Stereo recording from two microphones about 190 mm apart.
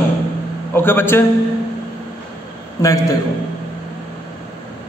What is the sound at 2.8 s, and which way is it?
Speech, 15° left (ahead or behind).